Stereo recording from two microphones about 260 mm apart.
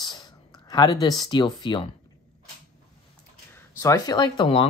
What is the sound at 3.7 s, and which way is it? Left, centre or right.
Speech, centre.